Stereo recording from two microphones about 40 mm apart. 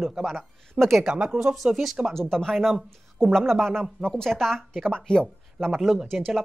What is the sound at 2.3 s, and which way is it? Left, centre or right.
A woman's voice, centre.